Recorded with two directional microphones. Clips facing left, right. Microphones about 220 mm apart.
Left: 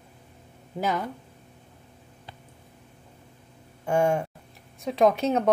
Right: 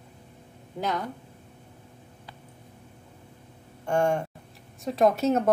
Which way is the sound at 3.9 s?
5° left (ahead or behind).